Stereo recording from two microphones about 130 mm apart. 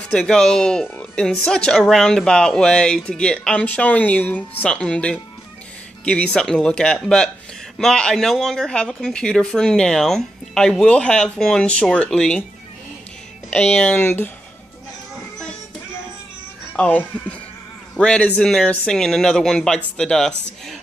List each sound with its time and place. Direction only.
0.1 s a woman's voice: 5° left (ahead or behind)
13.5 s a woman's voice: 10° left (ahead or behind)
16.7 s a woman's voice: 10° left (ahead or behind)